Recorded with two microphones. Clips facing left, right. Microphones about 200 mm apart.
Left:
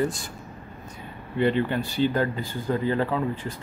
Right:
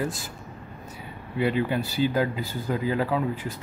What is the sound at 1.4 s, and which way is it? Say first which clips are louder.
Speech: left 1 dB; 5° right (ahead or behind).